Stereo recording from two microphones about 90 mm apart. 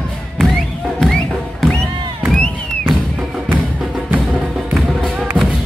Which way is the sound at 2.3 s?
10° left (ahead or behind).